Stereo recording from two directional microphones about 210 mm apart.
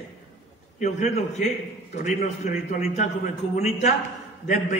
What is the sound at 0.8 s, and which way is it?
A man's voice, 35° left (ahead or behind).